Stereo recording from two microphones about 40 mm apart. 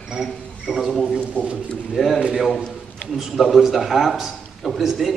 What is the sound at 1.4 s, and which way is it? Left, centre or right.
Speech, left.